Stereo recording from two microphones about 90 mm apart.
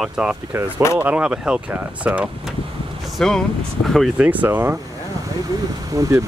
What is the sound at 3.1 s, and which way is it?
Speech, 5° left (ahead or behind).